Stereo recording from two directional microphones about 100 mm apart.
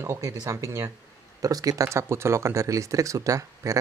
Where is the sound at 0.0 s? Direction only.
30° right (ahead or behind).